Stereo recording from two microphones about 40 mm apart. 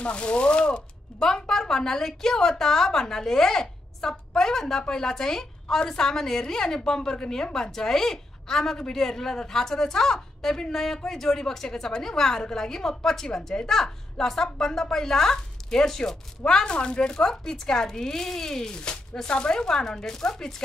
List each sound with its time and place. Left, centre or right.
0.0 s speech: left
1.2 s a woman's voice: centre
16.6 s speech: left
17.2 s a woman's voice: centre